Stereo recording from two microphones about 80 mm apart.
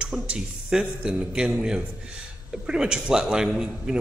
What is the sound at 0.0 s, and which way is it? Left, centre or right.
Speech, centre.